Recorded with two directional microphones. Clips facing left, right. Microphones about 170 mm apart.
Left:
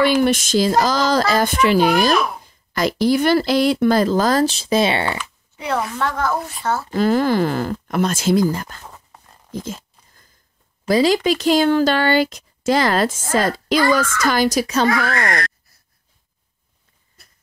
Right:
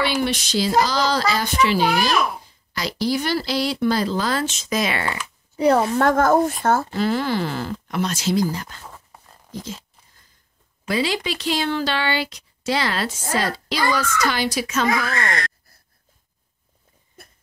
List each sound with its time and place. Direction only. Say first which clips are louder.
0.2 s speech: left 6 dB; 50° left (ahead or behind); by 5.2 s 30° left (ahead or behind)
5.6 s a woman's voice: right 6 dB; 35° right (ahead or behind)
5.9 s speech: right 6 dB; 45° right (ahead or behind)
6.9 s speech: left 5 dB; 45° left (ahead or behind)
10.9 s speech: left 8 dB; 40° left (ahead or behind)